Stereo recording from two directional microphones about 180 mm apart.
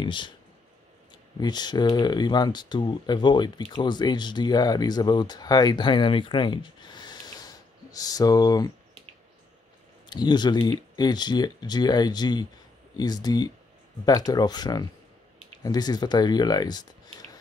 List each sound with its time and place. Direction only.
0.0 s speech: 25° left (ahead or behind)
1.4 s speech: 25° left (ahead or behind)
10.0 s speech: 25° left (ahead or behind)